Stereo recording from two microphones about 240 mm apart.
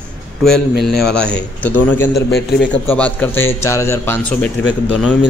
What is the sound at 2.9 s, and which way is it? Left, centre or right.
A man's voice, centre.